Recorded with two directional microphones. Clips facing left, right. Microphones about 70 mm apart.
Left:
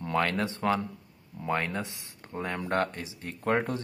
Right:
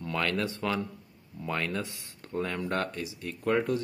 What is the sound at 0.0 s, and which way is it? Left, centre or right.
Speech, left.